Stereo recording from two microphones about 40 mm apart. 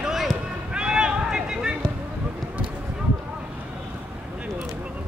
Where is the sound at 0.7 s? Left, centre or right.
Right.